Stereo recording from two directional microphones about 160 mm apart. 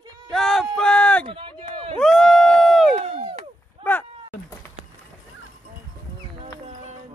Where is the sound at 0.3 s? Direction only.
Centre (ahead or behind).